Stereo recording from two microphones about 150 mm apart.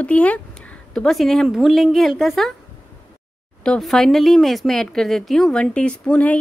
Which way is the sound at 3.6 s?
5° left (ahead or behind).